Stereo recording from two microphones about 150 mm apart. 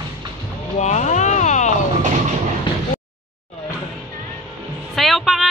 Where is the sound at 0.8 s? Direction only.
50° left (ahead or behind).